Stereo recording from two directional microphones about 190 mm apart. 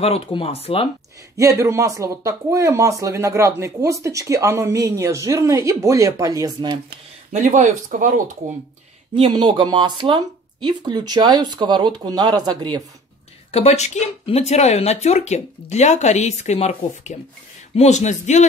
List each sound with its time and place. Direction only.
0.0 s speech: 30° left (ahead or behind)
1.3 s speech: 15° right (ahead or behind)
7.3 s speech: 40° right (ahead or behind)
9.1 s speech: 25° right (ahead or behind)
13.5 s speech: 35° left (ahead or behind)